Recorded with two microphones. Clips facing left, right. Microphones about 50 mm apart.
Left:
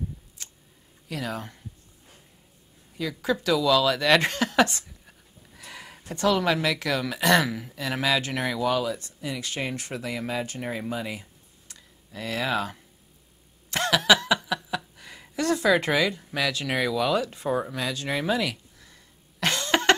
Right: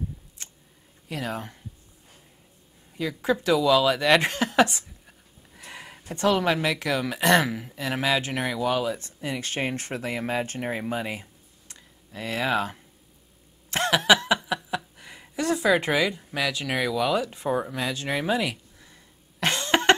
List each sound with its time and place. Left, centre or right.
0.4 s a sound: right
1.0 s speech: right
3.0 s speech: right
5.6 s a sound: right
6.1 s speech: right
8.9 s speech: right
11.7 s a sound: right
13.7 s snicker: right
15.0 s speech: right
16.3 s speech: right
17.2 s speech: right
19.4 s cough: right